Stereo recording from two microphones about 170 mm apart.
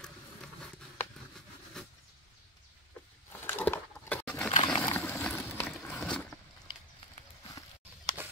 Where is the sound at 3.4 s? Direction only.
10° left (ahead or behind).